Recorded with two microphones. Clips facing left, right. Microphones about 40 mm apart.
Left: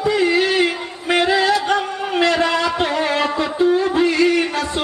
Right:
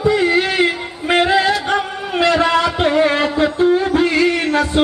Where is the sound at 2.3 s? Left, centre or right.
Centre.